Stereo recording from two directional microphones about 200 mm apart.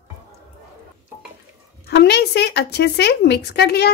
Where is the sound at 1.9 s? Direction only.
55° left (ahead or behind).